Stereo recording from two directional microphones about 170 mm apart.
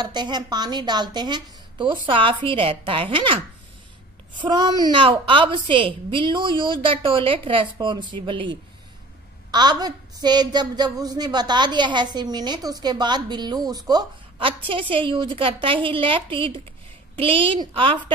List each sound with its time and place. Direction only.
0.1 s a woman's voice: 25° right (ahead or behind)
4.4 s a woman's voice: 25° right (ahead or behind)